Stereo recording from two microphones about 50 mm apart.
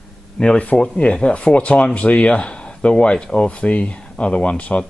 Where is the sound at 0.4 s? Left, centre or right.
Centre.